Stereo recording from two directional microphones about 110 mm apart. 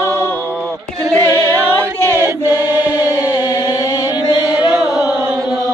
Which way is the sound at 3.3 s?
30° left (ahead or behind).